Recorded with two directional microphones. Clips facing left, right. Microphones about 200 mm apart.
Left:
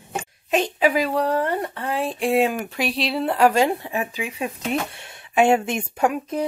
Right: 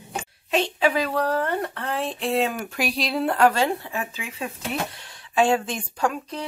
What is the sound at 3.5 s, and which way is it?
Speech, 20° left (ahead or behind).